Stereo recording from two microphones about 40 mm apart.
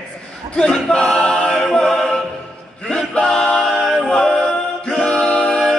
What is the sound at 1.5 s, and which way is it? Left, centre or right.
A capella, centre.